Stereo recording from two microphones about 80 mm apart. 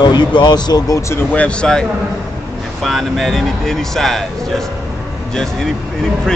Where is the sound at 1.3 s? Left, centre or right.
Centre.